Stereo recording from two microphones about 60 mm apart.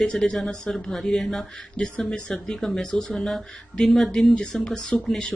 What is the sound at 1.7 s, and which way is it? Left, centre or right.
Speech, centre.